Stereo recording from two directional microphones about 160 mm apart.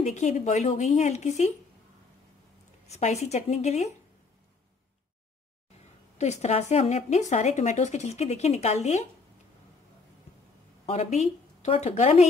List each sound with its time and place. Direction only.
0.0 s a woman's voice: 45° left (ahead or behind)
2.9 s a woman's voice: 45° left (ahead or behind)
6.1 s a woman's voice: 45° left (ahead or behind)
10.9 s a woman's voice: 45° left (ahead or behind)